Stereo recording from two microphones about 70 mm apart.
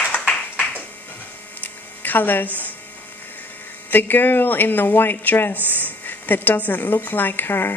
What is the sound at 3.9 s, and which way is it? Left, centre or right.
Speech, left.